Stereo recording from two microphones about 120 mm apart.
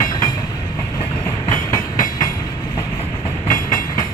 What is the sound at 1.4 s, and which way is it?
Train, 30° left (ahead or behind).